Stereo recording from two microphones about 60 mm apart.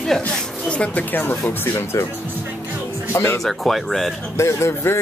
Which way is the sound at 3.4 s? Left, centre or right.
Centre.